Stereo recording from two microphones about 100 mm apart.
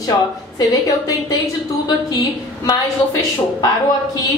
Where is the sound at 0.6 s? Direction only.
35° left (ahead or behind).